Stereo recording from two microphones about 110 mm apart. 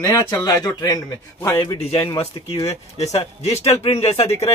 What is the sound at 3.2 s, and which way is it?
Speech, 60° left (ahead or behind).